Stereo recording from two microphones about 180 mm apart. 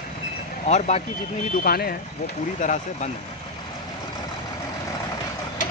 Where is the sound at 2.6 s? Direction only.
45° left (ahead or behind).